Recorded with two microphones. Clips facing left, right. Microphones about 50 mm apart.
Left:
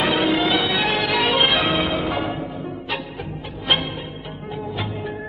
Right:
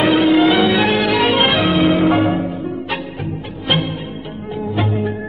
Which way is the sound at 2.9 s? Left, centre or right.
Right.